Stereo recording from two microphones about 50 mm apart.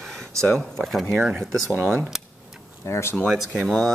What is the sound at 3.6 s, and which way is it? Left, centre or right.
Speech, centre.